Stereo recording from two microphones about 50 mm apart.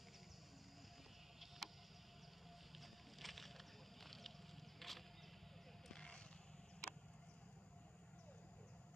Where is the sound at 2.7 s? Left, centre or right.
Centre.